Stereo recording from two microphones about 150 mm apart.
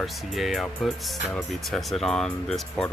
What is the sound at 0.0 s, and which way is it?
Speech, centre (ahead or behind).